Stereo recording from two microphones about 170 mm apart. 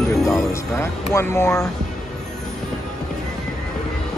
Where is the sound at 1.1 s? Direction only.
15° left (ahead or behind).